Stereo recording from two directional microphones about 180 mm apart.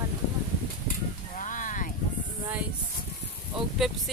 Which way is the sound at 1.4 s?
45° left (ahead or behind).